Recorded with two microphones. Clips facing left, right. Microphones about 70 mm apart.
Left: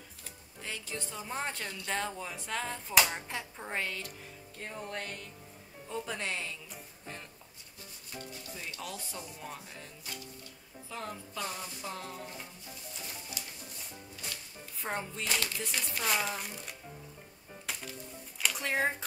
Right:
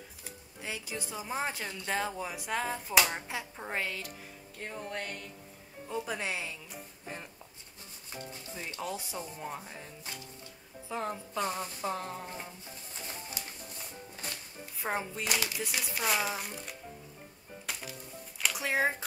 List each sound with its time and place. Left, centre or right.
0.6 s speech: centre
8.3 s music: right
9.1 s speech: centre
14.8 s speech: centre
17.7 s music: centre
18.4 s speech: centre